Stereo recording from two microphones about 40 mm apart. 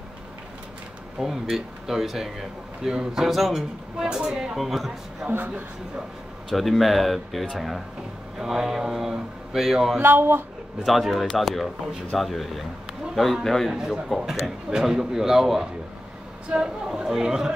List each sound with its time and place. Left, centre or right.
1.2 s speech: centre
2.8 s speech: right
3.2 s speech: centre
4.0 s speech: centre
4.6 s speech: centre
6.5 s speech: centre
8.4 s speech: centre
9.9 s speech: right
10.9 s a man's voice: centre
13.7 s speech: centre
16.4 s speech: right